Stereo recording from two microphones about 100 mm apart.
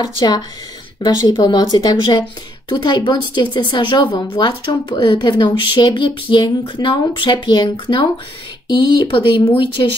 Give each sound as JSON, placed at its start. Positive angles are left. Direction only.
{"t": 0.0, "sound": "speech", "side_deg": 45}